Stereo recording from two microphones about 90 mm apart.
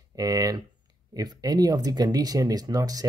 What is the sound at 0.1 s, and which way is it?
Speech, 40° right (ahead or behind).